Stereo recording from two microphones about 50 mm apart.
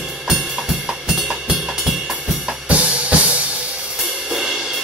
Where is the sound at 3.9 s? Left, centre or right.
Centre.